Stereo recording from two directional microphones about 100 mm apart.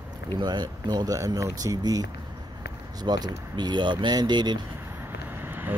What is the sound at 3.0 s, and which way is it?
Speech, 45° right (ahead or behind).